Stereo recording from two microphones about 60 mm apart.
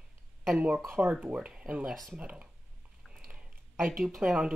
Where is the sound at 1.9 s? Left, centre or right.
Centre.